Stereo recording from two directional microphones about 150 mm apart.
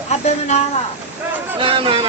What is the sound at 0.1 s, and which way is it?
Speech, 50° left (ahead or behind).